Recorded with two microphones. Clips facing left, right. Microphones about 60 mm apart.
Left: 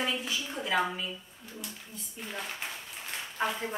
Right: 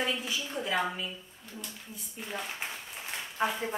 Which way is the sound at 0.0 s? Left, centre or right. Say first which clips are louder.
Even; centre.